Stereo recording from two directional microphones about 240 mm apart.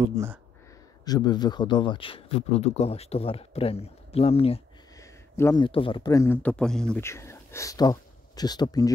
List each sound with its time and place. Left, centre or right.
0.0 s speech: centre
1.0 s speech: centre